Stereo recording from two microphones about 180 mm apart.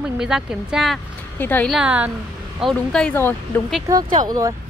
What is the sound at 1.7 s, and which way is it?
Speech, 5° right (ahead or behind).